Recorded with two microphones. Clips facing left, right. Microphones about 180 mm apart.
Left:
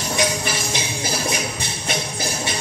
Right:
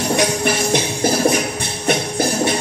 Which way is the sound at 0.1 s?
60° right (ahead or behind).